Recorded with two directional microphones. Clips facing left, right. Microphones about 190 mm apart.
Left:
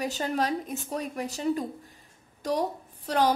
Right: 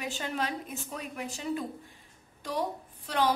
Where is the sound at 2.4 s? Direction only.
40° left (ahead or behind).